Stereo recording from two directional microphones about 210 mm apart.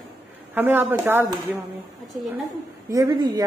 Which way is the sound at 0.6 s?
10° right (ahead or behind).